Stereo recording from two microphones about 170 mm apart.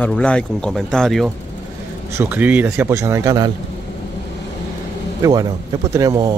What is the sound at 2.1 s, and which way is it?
A man's voice, 15° right (ahead or behind).